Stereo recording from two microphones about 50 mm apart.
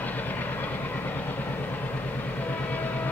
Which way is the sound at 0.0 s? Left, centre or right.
Left.